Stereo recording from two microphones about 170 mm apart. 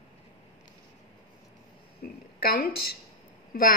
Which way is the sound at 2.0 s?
65° left (ahead or behind).